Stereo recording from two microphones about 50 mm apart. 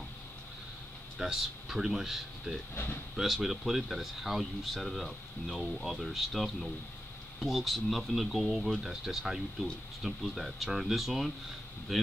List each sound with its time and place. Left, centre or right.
1.1 s speech: centre
2.7 s speech: left
3.2 s speech: centre